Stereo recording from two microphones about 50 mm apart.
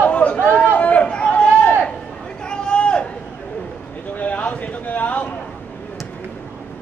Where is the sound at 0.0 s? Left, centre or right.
Left.